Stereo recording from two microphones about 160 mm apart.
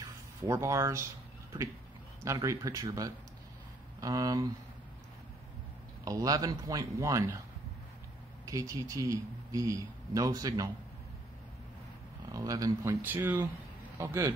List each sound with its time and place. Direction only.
0.4 s speech: 20° right (ahead or behind)
2.2 s speech: 20° right (ahead or behind)
6.0 s speech: 20° right (ahead or behind)
8.5 s speech: 20° right (ahead or behind)
12.3 s speech: 20° right (ahead or behind)